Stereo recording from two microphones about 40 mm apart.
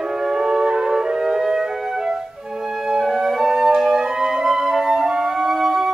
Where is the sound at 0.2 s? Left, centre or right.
Centre.